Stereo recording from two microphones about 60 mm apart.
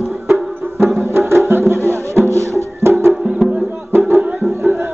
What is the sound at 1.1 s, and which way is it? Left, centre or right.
Music, right.